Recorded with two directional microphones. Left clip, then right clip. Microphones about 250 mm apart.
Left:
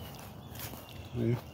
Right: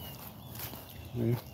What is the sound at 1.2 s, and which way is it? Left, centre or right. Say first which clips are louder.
Speech: even; centre.